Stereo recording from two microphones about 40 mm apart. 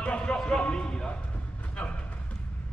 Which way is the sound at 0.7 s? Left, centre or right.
Left.